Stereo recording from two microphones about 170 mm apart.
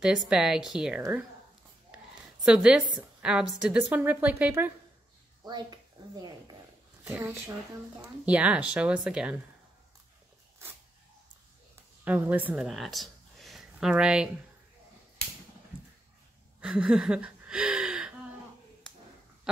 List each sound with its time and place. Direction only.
0.3 s a woman's voice: 5° right (ahead or behind)
2.4 s a woman's voice: 5° right (ahead or behind)
5.4 s speech: 25° right (ahead or behind)
7.1 s a woman's voice: 10° right (ahead or behind)
12.0 s speech: 10° right (ahead or behind)
16.6 s speech: 5° right (ahead or behind)
19.5 s dog: 5° right (ahead or behind)